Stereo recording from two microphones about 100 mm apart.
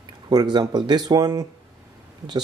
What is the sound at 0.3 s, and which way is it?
Speech, 45° right (ahead or behind).